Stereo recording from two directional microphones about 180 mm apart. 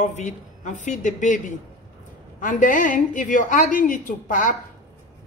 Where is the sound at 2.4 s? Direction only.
45° left (ahead or behind).